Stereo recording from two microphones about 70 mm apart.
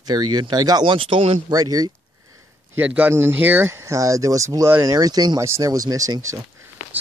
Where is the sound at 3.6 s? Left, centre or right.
Right.